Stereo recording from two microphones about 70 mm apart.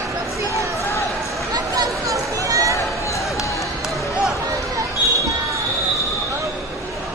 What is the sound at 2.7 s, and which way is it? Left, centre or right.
Run, left.